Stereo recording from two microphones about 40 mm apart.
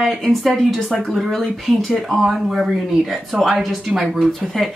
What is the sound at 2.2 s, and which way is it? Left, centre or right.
Speech, centre.